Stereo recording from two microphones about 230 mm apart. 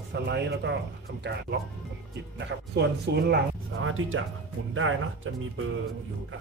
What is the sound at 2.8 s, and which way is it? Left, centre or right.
Speech, right.